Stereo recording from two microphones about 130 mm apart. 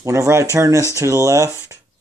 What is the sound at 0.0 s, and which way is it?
Speech, 25° right (ahead or behind).